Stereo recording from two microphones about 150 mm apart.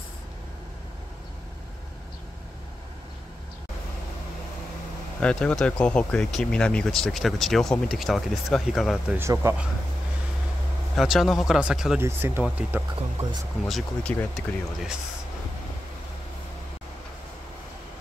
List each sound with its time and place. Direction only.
5.2 s speech: 5° left (ahead or behind)
9.2 s speech: 15° right (ahead or behind)
11.0 s speech: centre (ahead or behind)
12.0 s speech: 15° right (ahead or behind)
13.2 s speech: 45° right (ahead or behind)
13.7 s speech: centre (ahead or behind)